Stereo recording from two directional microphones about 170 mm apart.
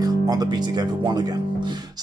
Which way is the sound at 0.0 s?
25° right (ahead or behind).